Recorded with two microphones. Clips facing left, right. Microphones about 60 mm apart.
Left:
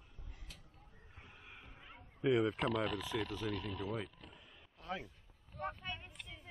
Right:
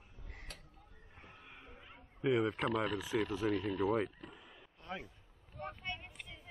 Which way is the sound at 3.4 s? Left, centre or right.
Right.